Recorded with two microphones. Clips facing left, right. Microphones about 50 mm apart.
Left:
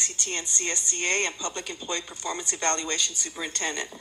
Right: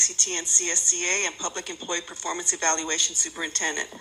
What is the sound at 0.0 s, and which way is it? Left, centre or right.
Speech, right.